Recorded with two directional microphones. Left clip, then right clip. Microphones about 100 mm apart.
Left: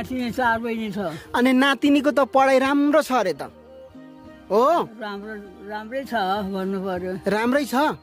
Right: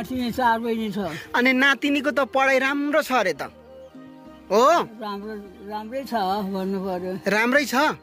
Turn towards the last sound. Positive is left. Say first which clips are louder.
# right 1 dB
turn(degrees=50)  # may be behind; listen again after turning